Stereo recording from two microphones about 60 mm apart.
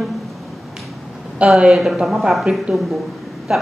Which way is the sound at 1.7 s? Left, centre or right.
Centre.